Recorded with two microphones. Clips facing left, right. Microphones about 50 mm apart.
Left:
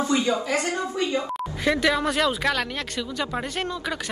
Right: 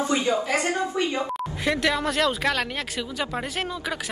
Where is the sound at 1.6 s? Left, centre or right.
Centre.